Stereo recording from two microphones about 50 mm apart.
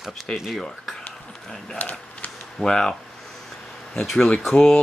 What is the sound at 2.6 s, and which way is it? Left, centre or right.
Speech, centre.